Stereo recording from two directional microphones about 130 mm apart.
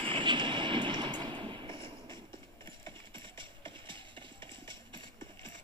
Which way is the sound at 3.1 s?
40° right (ahead or behind).